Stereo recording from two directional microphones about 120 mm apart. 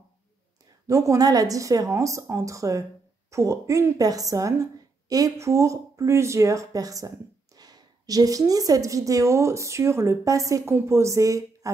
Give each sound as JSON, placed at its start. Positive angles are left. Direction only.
{"t": 0.8, "sound": "speech", "side_deg": -25}